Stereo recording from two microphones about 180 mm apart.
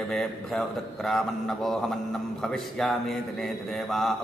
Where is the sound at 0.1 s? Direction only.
Centre (ahead or behind).